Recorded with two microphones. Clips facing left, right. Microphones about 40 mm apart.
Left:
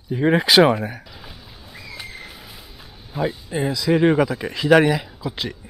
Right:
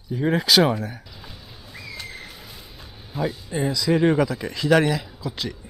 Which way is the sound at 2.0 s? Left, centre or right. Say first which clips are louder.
Left 1 dB; centre.